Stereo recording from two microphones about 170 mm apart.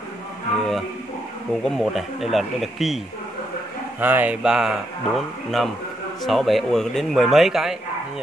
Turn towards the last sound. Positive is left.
turn(degrees=0)  # may be behind; listen again after turning